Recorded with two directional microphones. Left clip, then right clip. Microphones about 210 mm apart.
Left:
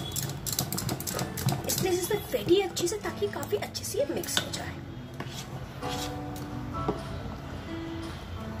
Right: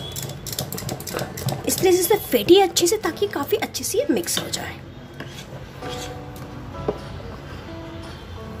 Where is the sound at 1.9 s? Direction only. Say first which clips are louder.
Right 12 dB; 50° right (ahead or behind).